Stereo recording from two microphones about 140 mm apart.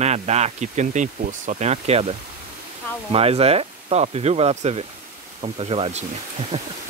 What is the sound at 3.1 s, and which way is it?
Speech, 45° right (ahead or behind).